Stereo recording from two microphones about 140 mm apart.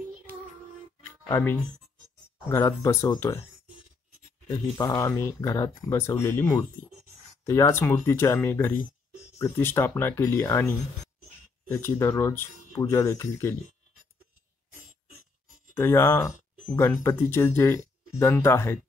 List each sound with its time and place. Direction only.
1.3 s speech: 15° left (ahead or behind)
4.7 s speech: 25° left (ahead or behind)
15.7 s speech: 20° left (ahead or behind)